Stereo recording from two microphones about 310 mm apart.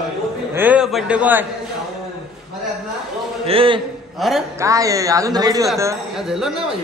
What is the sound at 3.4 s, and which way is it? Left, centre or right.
Speech, centre.